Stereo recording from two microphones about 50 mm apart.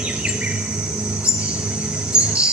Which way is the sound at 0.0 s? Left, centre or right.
Centre.